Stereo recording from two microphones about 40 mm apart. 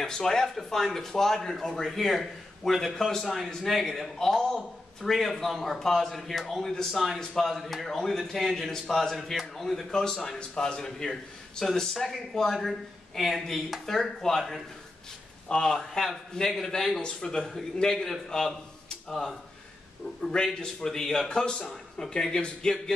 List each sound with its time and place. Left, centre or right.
0.0 s a man's voice: centre
15.4 s a man's voice: centre